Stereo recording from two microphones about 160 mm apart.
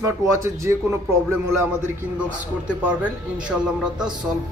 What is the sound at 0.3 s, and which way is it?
Speech, 20° right (ahead or behind).